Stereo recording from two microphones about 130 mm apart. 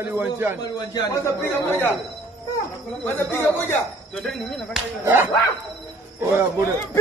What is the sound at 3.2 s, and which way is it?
Speech, 15° left (ahead or behind).